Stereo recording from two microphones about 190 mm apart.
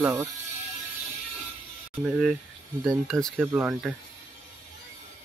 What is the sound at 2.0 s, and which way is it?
Speech, 5° right (ahead or behind).